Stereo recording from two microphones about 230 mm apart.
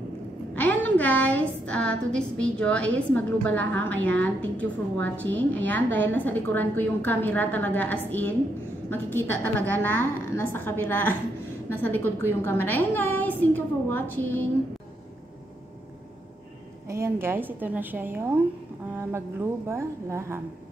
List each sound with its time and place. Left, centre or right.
0.6 s a woman's voice: centre
16.8 s a woman's voice: centre